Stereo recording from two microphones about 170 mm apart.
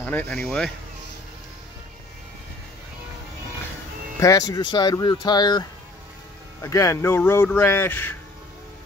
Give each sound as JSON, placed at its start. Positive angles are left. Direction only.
{"t": 0.0, "sound": "speech", "side_deg": 10}
{"t": 4.2, "sound": "speech", "side_deg": 20}